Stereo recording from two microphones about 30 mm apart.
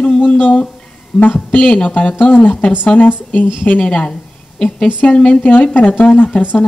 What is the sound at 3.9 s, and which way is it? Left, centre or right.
Speech, left.